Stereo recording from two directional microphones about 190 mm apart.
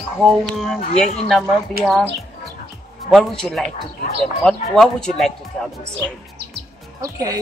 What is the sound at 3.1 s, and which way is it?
A woman's voice, centre (ahead or behind).